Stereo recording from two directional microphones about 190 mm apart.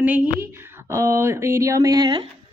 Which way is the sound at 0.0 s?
5° right (ahead or behind).